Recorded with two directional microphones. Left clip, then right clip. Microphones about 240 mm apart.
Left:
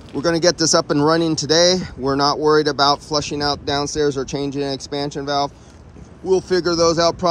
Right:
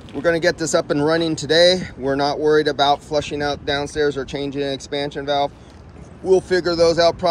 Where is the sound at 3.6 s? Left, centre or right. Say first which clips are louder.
Left 1 dB; centre.